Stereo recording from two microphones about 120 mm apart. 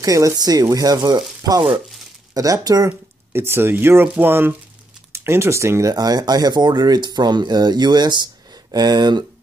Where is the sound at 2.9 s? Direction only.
20° right (ahead or behind).